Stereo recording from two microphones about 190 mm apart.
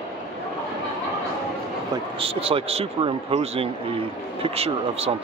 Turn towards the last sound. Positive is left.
turn(degrees=-30)  # may be behind; listen again after turning